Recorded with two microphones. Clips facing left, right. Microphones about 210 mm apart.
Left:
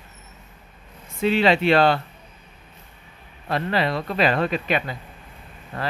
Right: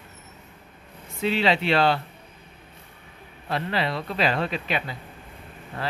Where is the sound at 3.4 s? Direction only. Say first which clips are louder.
Left 3 dB; 50° left (ahead or behind).